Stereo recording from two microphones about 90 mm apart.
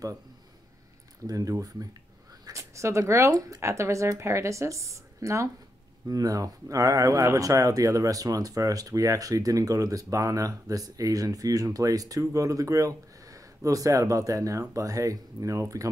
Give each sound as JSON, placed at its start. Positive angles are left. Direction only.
{"t": 1.2, "sound": "speech", "side_deg": -40}